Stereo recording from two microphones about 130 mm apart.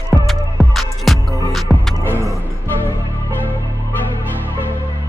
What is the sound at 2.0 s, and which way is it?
Music, 15° left (ahead or behind).